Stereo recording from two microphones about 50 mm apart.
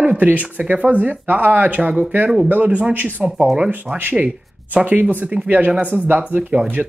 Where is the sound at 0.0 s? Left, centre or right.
Right.